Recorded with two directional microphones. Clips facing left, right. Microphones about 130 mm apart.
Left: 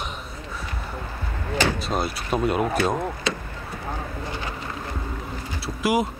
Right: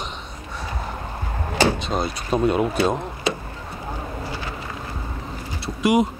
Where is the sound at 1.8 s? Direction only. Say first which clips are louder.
Right 1 dB; 5° left (ahead or behind).